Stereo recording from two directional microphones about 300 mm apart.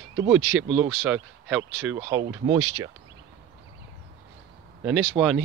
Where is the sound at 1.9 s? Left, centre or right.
Centre.